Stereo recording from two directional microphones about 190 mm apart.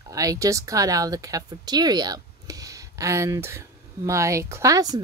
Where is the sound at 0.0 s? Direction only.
15° right (ahead or behind).